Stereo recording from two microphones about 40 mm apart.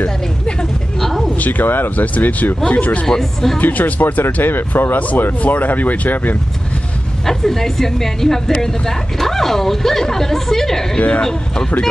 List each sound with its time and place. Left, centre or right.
0.0 s vehicle: left
0.9 s a sound: centre
1.3 s speech: left
3.1 s speech: centre
3.5 s speech: left
4.9 s speech: left
7.2 s speech: centre
11.0 s speech: left
11.2 s speech: centre